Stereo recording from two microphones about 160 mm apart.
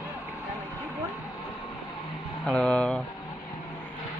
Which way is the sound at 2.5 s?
5° left (ahead or behind).